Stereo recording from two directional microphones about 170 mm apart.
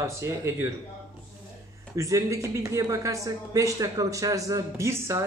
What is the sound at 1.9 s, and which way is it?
Speech, 20° right (ahead or behind).